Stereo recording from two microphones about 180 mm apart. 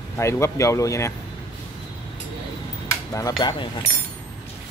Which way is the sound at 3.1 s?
20° left (ahead or behind).